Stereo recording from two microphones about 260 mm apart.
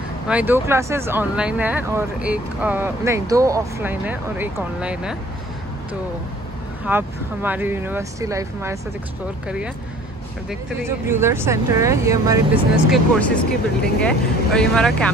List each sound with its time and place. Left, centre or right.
0.3 s speech: centre
6.9 s speech: centre
11.1 s speech: centre
12.9 s speech: centre